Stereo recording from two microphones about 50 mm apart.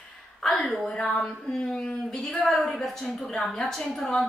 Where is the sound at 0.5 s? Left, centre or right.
Centre.